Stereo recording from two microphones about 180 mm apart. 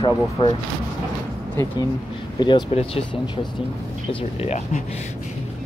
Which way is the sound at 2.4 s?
30° left (ahead or behind).